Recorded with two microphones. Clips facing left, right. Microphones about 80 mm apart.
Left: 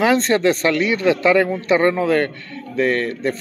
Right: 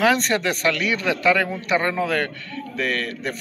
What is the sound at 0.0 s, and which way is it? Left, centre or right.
A man's voice, left.